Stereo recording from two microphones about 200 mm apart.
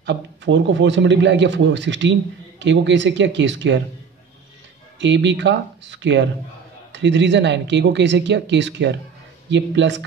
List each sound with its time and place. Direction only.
0.0 s speech: 60° right (ahead or behind)
4.9 s speech: 65° right (ahead or behind)